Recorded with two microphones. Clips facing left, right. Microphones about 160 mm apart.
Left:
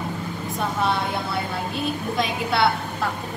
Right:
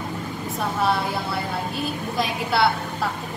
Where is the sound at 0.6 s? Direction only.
Centre (ahead or behind).